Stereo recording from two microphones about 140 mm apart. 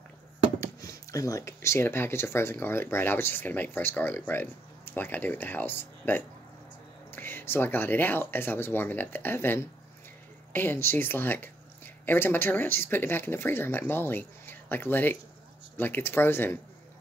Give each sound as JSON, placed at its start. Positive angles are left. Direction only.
{"t": 0.6, "sound": "speech", "side_deg": 25}